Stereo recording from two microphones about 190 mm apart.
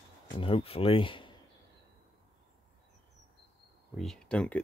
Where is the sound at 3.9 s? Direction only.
Centre (ahead or behind).